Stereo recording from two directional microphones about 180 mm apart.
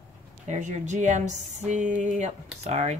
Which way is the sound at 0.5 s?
40° right (ahead or behind).